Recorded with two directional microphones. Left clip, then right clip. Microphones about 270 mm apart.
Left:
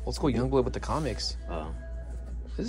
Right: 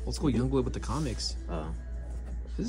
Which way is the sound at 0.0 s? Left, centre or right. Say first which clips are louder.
Left 2 dB; centre.